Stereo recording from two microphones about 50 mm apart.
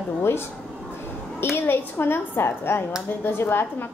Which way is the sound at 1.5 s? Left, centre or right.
Left.